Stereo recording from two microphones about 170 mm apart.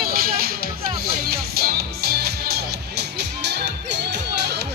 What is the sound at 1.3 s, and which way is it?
Music, 65° right (ahead or behind).